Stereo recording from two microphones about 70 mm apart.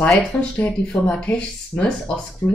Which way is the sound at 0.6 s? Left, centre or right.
Centre.